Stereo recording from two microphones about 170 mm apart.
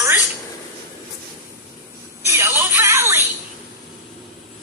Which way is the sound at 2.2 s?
15° right (ahead or behind).